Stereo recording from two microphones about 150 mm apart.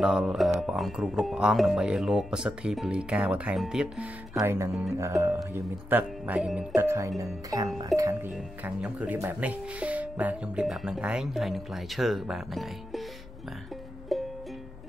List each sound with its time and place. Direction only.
0.0 s speech: 5° right (ahead or behind)
4.4 s speech: 20° right (ahead or behind)
6.7 s speech: 15° right (ahead or behind)
8.3 s speech: 5° right (ahead or behind)
14.1 s music: centre (ahead or behind)